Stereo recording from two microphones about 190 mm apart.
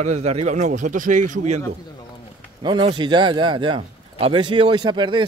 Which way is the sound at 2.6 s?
25° right (ahead or behind).